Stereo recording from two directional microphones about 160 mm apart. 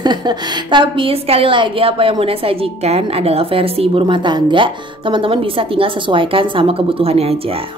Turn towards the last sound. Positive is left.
turn(degrees=-40)  # may be behind; listen again after turning